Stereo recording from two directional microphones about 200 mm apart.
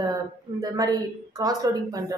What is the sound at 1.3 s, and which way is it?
Speech, 20° right (ahead or behind).